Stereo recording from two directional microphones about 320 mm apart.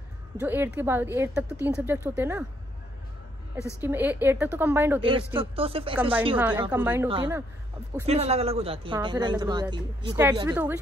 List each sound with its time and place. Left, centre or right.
0.4 s a woman's voice: centre
3.8 s a woman's voice: centre
6.3 s a woman's voice: centre